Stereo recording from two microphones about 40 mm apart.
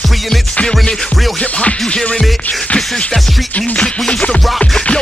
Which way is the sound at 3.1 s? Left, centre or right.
Centre.